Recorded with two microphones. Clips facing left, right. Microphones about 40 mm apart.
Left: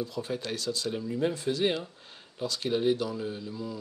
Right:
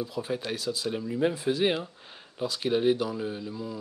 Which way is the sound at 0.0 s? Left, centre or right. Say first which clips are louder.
Right 2 dB; centre.